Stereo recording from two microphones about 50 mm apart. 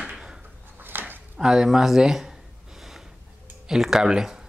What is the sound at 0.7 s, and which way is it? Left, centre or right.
Dog, right.